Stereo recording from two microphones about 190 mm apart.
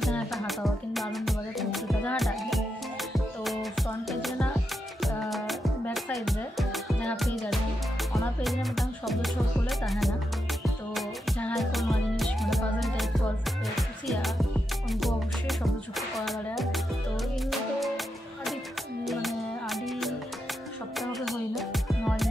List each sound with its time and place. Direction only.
0.0 s music: centre (ahead or behind)
4.1 s music: centre (ahead or behind)